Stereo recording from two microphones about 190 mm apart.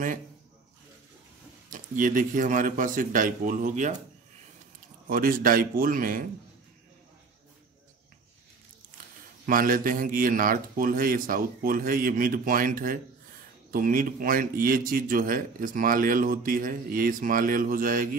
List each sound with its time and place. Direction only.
1.7 s a man's voice: 45° right (ahead or behind)
5.0 s a man's voice: 50° right (ahead or behind)
9.5 s a man's voice: 50° right (ahead or behind)